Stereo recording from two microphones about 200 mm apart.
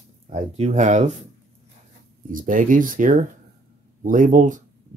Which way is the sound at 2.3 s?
40° right (ahead or behind).